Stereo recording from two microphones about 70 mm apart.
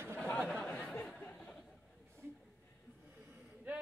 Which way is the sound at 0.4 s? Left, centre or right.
Centre.